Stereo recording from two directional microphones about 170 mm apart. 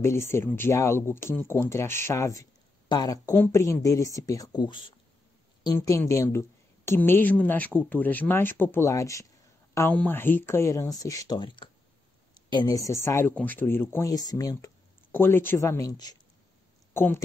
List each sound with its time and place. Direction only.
0.0 s a woman's voice: 15° left (ahead or behind)